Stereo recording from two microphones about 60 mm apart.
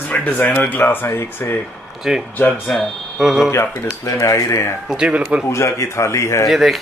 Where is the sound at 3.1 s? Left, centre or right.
Centre.